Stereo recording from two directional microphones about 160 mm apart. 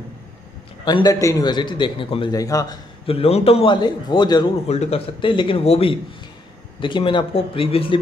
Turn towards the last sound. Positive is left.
turn(degrees=35)  # may be behind; listen again after turning